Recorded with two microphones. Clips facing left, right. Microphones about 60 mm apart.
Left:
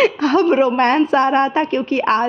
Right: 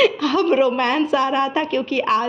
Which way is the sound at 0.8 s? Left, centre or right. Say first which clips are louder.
Left 4 dB; left.